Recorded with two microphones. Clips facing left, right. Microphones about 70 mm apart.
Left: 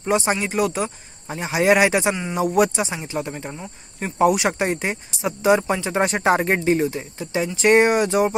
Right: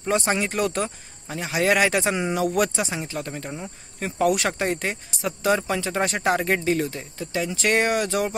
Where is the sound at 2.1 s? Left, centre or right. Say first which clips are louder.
Left 3 dB; centre.